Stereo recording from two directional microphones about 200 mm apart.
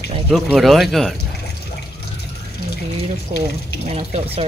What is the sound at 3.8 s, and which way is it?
Speech, 30° right (ahead or behind).